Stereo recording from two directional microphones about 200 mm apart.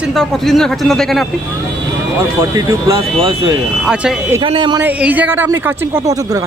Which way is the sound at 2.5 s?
20° right (ahead or behind).